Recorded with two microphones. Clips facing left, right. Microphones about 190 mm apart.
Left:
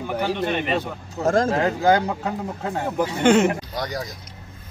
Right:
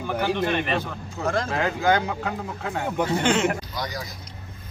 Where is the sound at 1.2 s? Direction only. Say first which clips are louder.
Left 5 dB; 45° left (ahead or behind).